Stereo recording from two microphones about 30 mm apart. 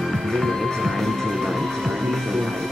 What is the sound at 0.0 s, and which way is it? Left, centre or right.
Music, centre.